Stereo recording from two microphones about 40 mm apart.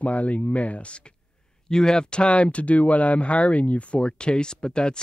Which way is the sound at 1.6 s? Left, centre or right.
Centre.